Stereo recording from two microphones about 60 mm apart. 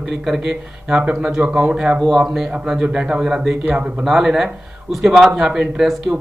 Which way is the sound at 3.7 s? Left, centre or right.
Right.